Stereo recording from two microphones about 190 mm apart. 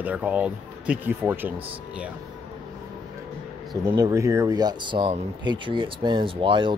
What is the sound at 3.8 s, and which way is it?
Speech, 20° right (ahead or behind).